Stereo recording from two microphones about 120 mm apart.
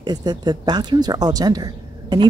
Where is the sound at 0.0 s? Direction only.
35° right (ahead or behind).